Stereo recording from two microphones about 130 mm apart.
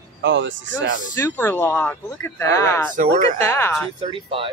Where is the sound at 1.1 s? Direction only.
20° left (ahead or behind).